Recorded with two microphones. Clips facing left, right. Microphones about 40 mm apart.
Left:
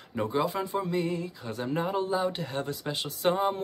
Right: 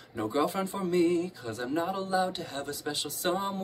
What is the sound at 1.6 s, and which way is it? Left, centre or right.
Speech, left.